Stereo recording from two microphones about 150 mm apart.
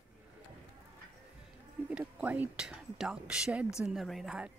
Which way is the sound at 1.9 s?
5° right (ahead or behind).